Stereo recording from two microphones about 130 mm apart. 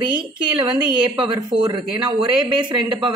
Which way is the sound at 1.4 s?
35° right (ahead or behind).